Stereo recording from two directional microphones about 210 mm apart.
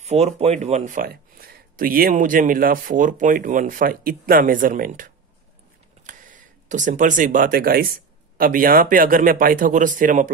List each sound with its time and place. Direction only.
0.0 s speech: 30° right (ahead or behind)